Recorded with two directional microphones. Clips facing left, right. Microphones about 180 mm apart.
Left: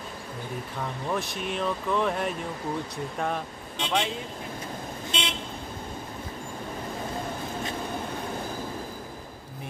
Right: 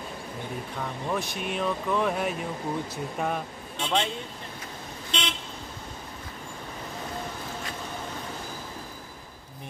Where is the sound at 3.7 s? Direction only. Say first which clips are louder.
Even; 15° left (ahead or behind).